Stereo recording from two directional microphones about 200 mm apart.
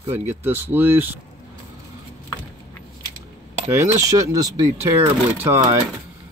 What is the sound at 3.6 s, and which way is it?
Speech, 15° right (ahead or behind).